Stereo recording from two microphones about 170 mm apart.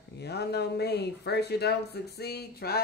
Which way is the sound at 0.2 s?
75° left (ahead or behind).